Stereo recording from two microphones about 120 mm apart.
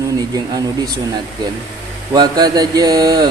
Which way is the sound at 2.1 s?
35° right (ahead or behind).